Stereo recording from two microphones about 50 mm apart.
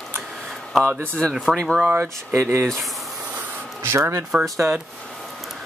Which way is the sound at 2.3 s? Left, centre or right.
Right.